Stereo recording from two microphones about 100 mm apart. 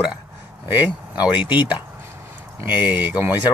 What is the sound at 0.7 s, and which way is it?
Speech, 15° right (ahead or behind).